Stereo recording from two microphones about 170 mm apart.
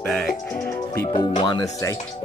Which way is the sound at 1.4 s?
25° left (ahead or behind).